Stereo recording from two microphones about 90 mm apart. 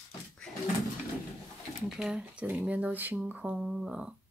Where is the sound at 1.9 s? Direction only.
5° right (ahead or behind).